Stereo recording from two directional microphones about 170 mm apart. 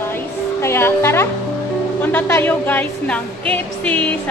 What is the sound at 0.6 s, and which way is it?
Speech, 15° left (ahead or behind).